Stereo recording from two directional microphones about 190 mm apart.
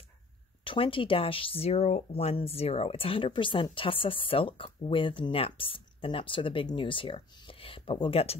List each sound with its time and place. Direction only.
0.7 s speech: 25° left (ahead or behind)